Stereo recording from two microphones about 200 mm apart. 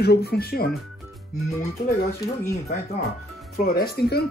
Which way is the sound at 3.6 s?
50° left (ahead or behind).